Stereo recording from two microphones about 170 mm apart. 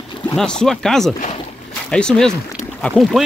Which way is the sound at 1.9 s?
5° left (ahead or behind).